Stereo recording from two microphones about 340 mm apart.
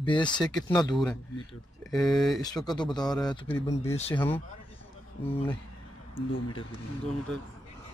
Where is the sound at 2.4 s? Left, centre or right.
Centre.